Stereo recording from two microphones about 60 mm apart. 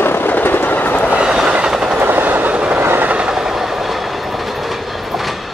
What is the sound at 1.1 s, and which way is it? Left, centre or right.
Train, centre.